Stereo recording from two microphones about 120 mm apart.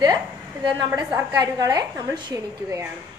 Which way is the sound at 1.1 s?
35° right (ahead or behind).